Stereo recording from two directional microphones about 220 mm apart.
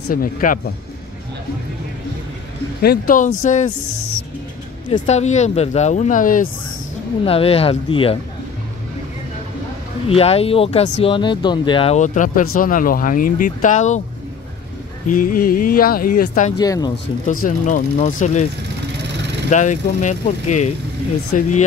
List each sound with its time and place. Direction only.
0.1 s speech: 40° left (ahead or behind)
2.8 s speech: 40° left (ahead or behind)
4.8 s speech: 25° left (ahead or behind)
7.2 s speech: 25° left (ahead or behind)
10.0 s speech: 25° left (ahead or behind)
15.0 s speech: 40° left (ahead or behind)
16.5 s speech: 15° left (ahead or behind)
17.3 s speech: 35° left (ahead or behind)
19.5 s speech: 35° left (ahead or behind)